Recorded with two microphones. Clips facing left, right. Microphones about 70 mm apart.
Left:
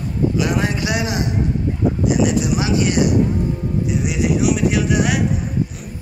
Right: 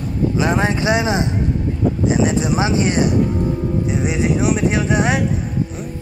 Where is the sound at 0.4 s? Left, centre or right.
Right.